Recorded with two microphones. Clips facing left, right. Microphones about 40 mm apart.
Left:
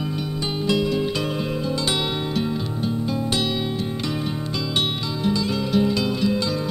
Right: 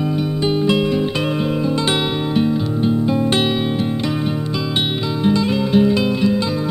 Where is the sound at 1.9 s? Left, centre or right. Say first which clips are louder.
Right 6 dB; right.